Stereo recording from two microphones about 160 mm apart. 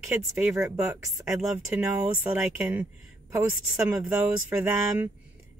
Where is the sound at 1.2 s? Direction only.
5° right (ahead or behind).